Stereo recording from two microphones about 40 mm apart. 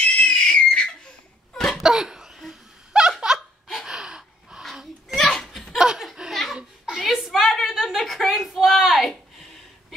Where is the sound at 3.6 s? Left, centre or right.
Centre.